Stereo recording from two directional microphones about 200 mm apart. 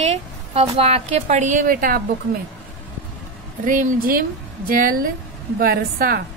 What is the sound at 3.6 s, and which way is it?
Speech, 40° right (ahead or behind).